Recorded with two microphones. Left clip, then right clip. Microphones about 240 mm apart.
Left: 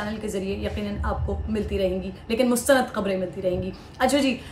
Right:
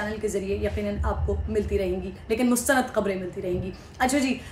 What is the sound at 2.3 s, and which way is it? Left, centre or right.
A woman's voice, centre.